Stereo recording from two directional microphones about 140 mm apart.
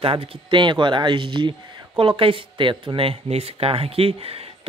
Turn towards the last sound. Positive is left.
turn(degrees=-45)  # may be behind; listen again after turning